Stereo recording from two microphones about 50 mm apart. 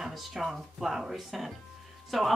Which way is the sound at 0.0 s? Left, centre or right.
Centre.